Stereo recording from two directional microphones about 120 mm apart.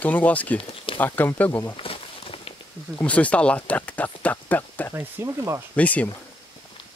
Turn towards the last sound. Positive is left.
turn(degrees=10)  # may be behind; listen again after turning